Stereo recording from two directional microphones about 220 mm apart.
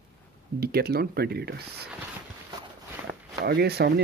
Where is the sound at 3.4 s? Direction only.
45° right (ahead or behind).